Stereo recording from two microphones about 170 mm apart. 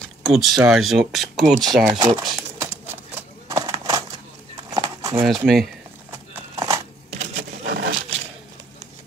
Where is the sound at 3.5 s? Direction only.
20° right (ahead or behind).